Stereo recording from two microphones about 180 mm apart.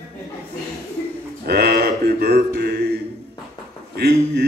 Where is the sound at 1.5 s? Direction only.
65° right (ahead or behind).